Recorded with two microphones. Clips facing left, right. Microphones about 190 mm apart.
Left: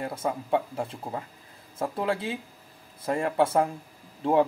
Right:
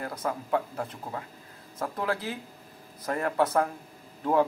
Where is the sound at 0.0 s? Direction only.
25° left (ahead or behind).